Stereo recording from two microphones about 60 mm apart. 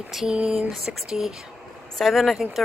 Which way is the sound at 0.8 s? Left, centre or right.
Centre.